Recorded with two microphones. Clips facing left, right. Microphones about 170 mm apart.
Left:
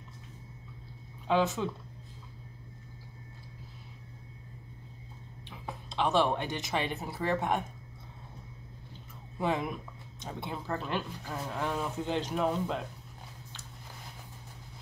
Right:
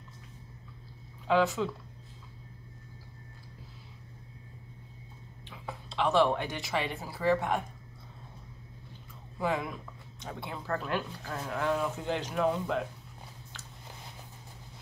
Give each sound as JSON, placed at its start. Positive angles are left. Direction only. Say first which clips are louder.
{"t": 1.2, "sound": "speech", "louder": "right 1 dB", "side_deg": 20}
{"t": 5.7, "sound": "speech", "louder": "right 1 dB", "side_deg": 20}
{"t": 9.4, "sound": "speech", "louder": "left 1 dB", "side_deg": 20}